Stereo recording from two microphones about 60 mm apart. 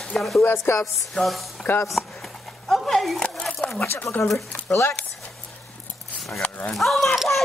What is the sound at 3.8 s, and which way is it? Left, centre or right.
Speech, left.